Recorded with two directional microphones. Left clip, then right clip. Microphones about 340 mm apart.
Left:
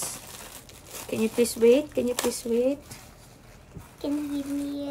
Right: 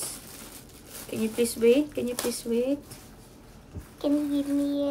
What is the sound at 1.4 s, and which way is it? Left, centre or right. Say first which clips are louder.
Speech: left 2 dB; centre.